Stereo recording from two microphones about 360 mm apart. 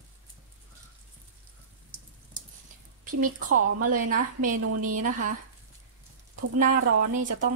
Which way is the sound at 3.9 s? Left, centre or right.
Right.